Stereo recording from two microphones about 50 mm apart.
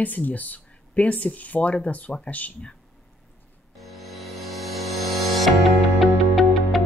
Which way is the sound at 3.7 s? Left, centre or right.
Centre.